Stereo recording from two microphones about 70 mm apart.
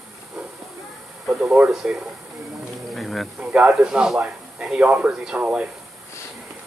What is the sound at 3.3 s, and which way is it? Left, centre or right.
Speech, centre.